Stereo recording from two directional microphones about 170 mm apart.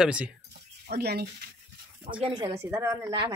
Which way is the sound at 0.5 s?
70° right (ahead or behind).